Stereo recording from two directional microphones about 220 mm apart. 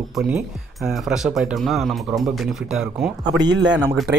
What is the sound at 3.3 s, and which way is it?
Speech, 20° right (ahead or behind).